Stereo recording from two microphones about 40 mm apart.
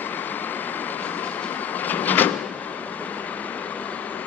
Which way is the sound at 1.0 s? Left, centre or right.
Left.